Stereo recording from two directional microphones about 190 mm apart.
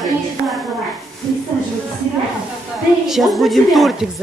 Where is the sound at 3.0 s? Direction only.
Centre (ahead or behind).